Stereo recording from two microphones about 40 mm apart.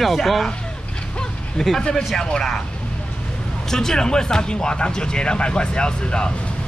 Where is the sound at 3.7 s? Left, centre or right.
Centre.